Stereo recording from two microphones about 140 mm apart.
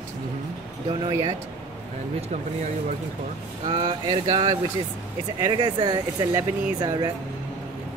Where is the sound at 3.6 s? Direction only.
35° right (ahead or behind).